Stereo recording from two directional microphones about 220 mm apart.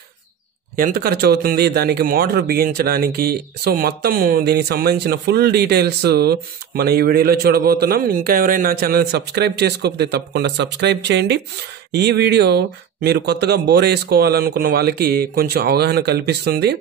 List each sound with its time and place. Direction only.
0.7 s speech: 40° right (ahead or behind)